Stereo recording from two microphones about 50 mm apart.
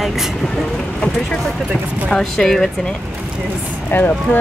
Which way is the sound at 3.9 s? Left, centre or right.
Left.